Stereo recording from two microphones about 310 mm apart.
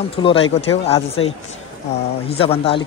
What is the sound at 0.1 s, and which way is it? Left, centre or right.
Speech, centre.